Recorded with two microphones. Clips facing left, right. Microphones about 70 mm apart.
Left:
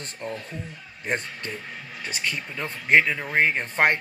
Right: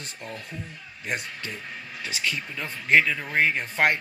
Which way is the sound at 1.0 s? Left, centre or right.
Left.